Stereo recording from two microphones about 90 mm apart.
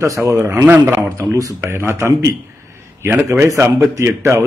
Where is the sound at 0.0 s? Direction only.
35° right (ahead or behind).